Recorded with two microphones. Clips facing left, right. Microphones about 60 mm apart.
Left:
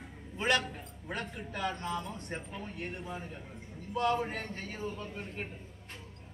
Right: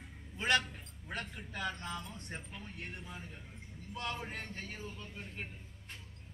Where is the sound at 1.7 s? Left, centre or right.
Left.